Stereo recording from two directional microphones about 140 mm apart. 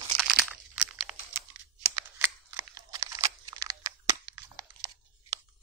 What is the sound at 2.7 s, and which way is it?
Crumpling, 25° right (ahead or behind).